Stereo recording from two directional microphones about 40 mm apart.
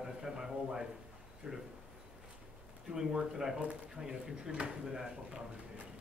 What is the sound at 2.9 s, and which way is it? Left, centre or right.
Speech, centre.